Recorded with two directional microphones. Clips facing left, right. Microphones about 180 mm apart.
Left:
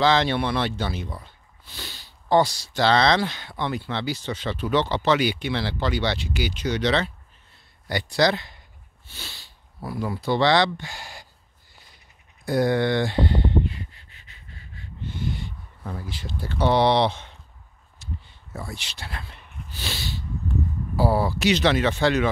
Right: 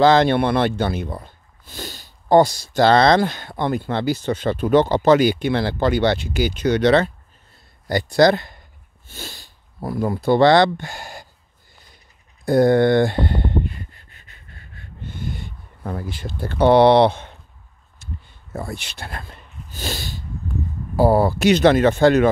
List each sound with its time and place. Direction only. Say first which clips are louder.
0.0 s speech: right 6 dB; 50° right (ahead or behind)
12.4 s a sound: right 7 dB; 50° right (ahead or behind)
20.9 s speech: right 7 dB; 50° right (ahead or behind)